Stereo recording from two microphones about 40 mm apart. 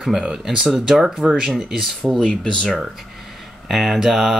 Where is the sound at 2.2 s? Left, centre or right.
Centre.